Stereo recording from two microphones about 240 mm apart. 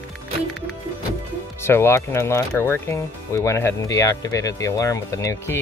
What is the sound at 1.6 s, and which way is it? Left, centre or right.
Speech, centre.